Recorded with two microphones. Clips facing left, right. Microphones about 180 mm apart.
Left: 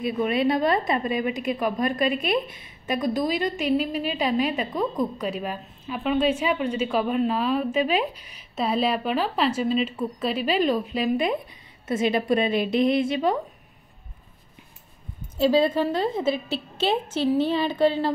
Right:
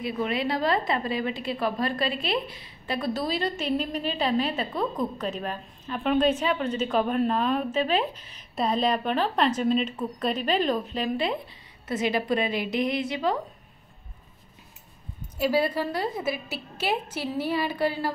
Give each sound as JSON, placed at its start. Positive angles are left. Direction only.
{"t": 0.0, "sound": "a woman's voice", "side_deg": 20}
{"t": 11.9, "sound": "a woman's voice", "side_deg": 25}
{"t": 12.7, "sound": "a woman's voice", "side_deg": -20}
{"t": 15.3, "sound": "a woman's voice", "side_deg": 25}